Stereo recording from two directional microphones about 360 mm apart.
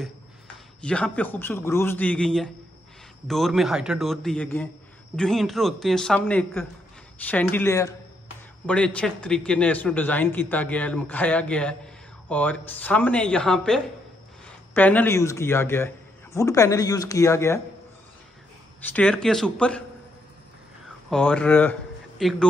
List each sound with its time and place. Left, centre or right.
0.7 s a man's voice: centre
18.9 s a man's voice: centre
21.1 s a man's voice: centre